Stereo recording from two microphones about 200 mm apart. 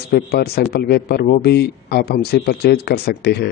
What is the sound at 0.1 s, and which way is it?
Speech, 50° left (ahead or behind).